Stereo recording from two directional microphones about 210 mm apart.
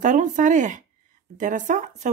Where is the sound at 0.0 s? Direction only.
35° right (ahead or behind).